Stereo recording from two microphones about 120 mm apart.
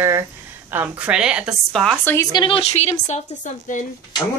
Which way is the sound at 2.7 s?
65° left (ahead or behind).